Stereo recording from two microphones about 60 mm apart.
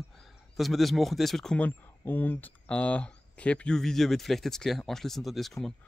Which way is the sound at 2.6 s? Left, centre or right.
Left.